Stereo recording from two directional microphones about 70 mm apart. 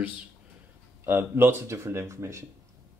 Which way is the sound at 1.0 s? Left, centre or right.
Right.